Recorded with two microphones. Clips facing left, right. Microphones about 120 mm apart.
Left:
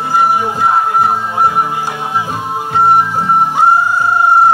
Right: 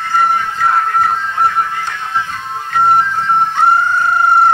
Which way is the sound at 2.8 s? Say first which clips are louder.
Left 1 dB; 15° left (ahead or behind).